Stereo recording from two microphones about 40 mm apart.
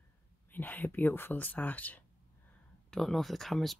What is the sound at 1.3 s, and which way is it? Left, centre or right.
Speech, left.